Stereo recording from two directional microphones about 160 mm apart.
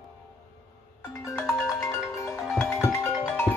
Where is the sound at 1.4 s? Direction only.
15° left (ahead or behind).